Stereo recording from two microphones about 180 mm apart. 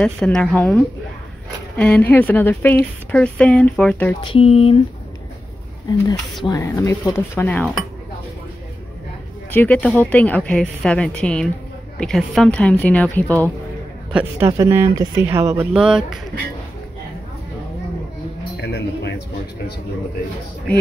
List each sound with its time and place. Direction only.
0.0 s a woman's voice: 5° left (ahead or behind)
4.2 s speech: 30° left (ahead or behind)
6.4 s speech: 20° left (ahead or behind)
9.5 s speech: 10° left (ahead or behind)
14.1 s a woman's voice: 15° right (ahead or behind)
18.6 s music: 70° left (ahead or behind)